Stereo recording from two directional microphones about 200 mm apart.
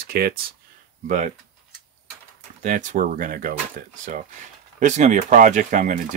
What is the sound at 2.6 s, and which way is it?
Speech, 40° right (ahead or behind).